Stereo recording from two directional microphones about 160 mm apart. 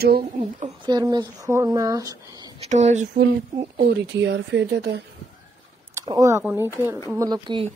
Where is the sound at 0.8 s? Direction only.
25° right (ahead or behind).